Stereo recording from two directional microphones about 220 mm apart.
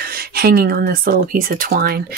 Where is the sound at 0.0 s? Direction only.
45° right (ahead or behind).